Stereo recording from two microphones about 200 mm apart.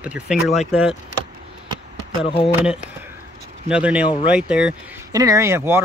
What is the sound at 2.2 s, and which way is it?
Speech, 30° left (ahead or behind).